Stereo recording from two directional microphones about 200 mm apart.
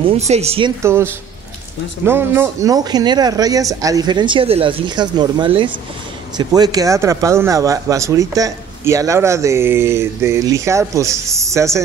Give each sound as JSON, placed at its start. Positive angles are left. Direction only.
{"t": 0.3, "sound": "speech", "side_deg": -30}
{"t": 0.8, "sound": "speech", "side_deg": -10}